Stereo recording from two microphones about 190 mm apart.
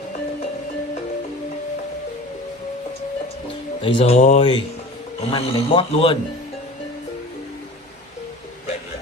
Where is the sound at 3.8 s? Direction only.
35° left (ahead or behind).